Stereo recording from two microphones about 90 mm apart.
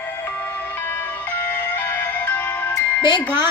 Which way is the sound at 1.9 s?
20° left (ahead or behind).